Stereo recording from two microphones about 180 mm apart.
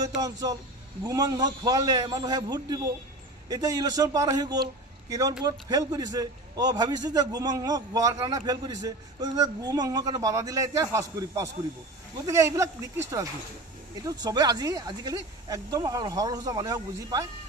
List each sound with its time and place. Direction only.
0.2 s a man's voice: 20° right (ahead or behind)